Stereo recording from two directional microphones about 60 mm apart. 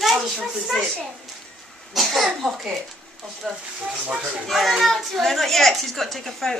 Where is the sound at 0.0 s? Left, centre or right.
Centre.